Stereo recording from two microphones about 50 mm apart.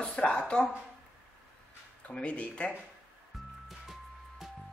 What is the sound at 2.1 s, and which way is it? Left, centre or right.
Speech, left.